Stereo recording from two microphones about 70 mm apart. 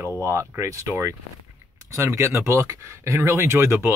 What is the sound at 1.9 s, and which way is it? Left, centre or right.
Speech, right.